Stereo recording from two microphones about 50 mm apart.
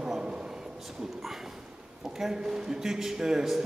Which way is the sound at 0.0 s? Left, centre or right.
Centre.